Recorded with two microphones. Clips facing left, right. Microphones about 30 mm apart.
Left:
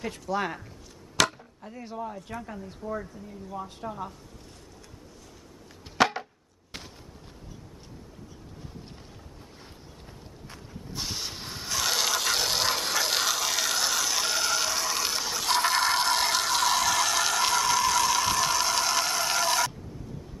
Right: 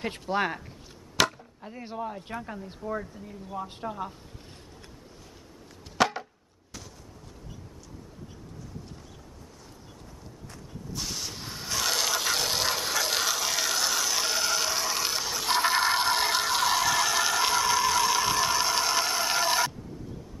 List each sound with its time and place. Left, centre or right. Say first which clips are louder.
0.0 s speech: right 2 dB; right
1.2 s chop: even; centre
1.6 s speech: right 1 dB; centre
2.4 s speech: right 1 dB; centre
5.9 s chopping: left 1 dB; centre
11.0 s dog: left 1 dB; centre